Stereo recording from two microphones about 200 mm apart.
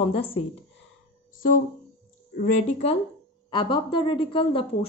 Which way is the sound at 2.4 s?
30° left (ahead or behind).